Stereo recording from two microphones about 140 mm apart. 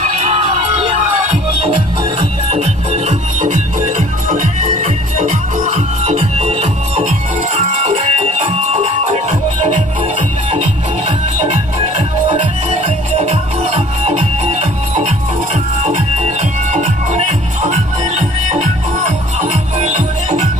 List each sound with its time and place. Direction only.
0.2 s music: 55° right (ahead or behind)
2.5 s music: 50° right (ahead or behind)
12.3 s music: 40° right (ahead or behind); by 20.4 s 55° right (ahead or behind)